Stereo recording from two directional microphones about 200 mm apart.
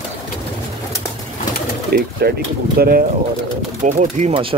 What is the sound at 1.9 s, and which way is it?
Speech, 50° right (ahead or behind).